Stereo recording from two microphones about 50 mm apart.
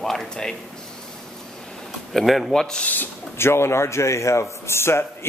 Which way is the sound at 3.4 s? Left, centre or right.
Left.